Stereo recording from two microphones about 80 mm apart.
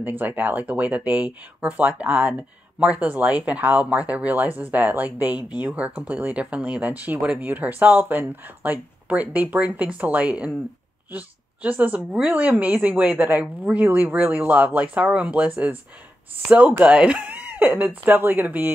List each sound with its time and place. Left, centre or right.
0.0 s speech: right